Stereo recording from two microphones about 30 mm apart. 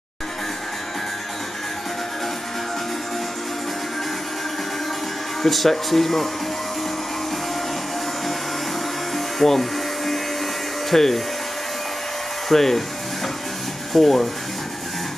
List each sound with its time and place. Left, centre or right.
5.4 s speech: centre
9.1 s vacuum cleaner: centre
10.9 s speech: centre
12.4 s speech: centre
13.9 s speech: centre